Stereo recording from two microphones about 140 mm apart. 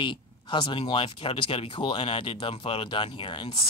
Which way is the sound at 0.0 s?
35° left (ahead or behind).